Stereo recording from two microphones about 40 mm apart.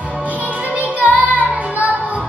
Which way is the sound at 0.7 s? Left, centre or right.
Right.